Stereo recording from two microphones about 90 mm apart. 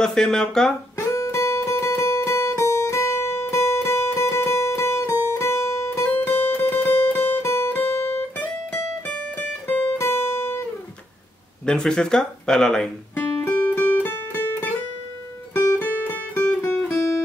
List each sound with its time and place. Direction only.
0.0 s speech: 5° left (ahead or behind)
0.9 s music: 35° left (ahead or behind)
5.3 s guitar: 30° left (ahead or behind)
11.6 s speech: 10° left (ahead or behind)
13.1 s music: 20° left (ahead or behind)